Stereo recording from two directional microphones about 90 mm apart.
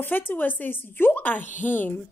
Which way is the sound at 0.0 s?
20° left (ahead or behind).